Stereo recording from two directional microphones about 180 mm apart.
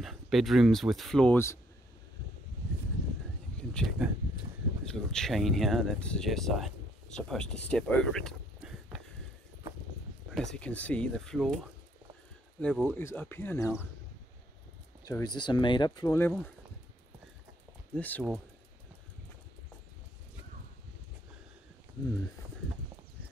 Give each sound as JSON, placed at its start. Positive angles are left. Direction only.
{"t": 0.0, "sound": "speech", "side_deg": 0}
{"t": 3.5, "sound": "a sound", "side_deg": 5}
{"t": 4.9, "sound": "speech", "side_deg": 0}
{"t": 10.3, "sound": "speech", "side_deg": 5}
{"t": 12.5, "sound": "speech", "side_deg": 5}
{"t": 15.0, "sound": "speech", "side_deg": 20}
{"t": 16.2, "sound": "speech", "side_deg": 10}
{"t": 17.9, "sound": "speech", "side_deg": 10}